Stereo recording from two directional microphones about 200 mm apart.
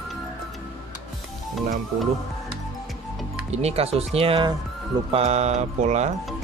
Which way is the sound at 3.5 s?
30° right (ahead or behind).